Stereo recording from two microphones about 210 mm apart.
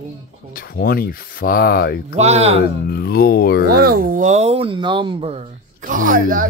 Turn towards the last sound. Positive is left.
turn(degrees=-40)  # may be behind; listen again after turning